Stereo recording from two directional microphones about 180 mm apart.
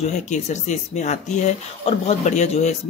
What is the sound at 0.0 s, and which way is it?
Speech, 40° left (ahead or behind).